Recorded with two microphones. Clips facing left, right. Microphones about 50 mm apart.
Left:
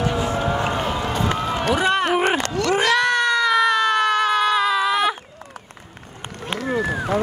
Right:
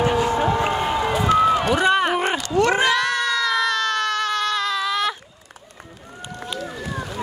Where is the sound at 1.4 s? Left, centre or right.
Centre.